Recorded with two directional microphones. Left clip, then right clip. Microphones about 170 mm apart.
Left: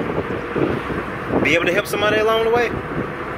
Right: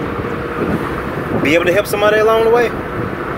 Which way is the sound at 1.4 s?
10° right (ahead or behind).